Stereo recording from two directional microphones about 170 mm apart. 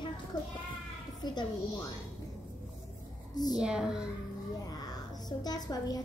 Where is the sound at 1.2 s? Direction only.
25° left (ahead or behind).